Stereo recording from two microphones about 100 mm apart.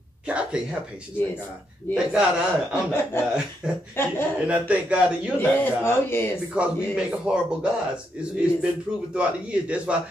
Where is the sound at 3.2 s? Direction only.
25° left (ahead or behind).